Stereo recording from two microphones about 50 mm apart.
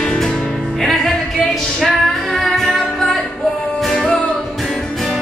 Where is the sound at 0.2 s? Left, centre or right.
Centre.